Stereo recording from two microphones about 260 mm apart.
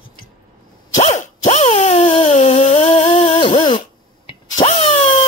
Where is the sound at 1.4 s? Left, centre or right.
Left.